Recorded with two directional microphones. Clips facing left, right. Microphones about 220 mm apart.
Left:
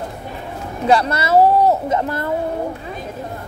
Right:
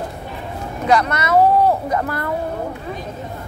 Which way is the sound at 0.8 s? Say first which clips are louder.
Left 1 dB; 30° left (ahead or behind).